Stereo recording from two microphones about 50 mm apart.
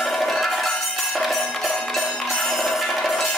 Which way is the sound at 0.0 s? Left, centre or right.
Centre.